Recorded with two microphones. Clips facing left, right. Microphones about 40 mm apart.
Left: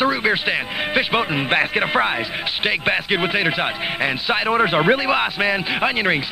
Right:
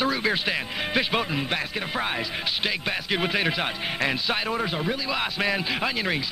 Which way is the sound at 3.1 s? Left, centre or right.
Left.